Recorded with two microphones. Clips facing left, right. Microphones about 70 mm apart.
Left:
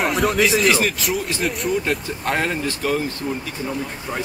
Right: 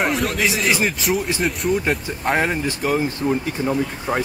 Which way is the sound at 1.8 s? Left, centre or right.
Centre.